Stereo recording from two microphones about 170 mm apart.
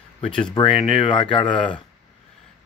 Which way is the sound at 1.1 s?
30° left (ahead or behind).